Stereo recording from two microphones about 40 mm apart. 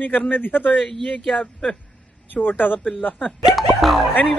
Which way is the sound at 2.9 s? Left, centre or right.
Left.